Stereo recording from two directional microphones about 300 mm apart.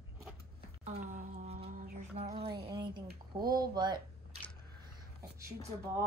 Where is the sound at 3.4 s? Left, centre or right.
Centre.